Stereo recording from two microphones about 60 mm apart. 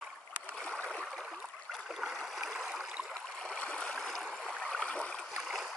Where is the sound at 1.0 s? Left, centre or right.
Centre.